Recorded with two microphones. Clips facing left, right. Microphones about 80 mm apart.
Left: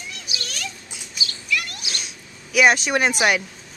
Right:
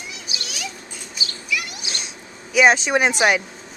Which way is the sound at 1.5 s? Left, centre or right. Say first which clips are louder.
Left 1 dB; centre.